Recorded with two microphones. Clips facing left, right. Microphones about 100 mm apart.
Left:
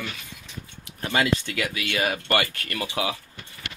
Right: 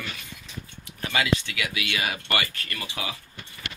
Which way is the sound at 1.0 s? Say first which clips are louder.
Left 2 dB; 40° left (ahead or behind).